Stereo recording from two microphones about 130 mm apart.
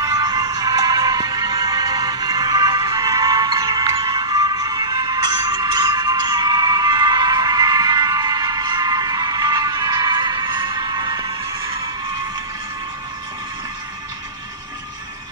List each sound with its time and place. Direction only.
0.0 s music: 30° right (ahead or behind)